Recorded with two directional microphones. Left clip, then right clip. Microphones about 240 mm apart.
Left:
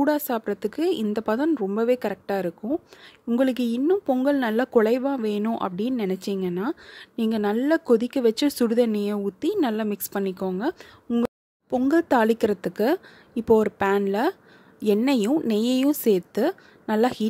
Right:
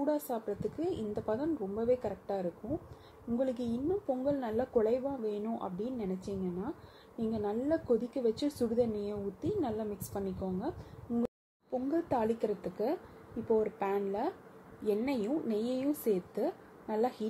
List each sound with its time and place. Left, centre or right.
0.0 s a woman's voice: left
11.7 s a woman's voice: left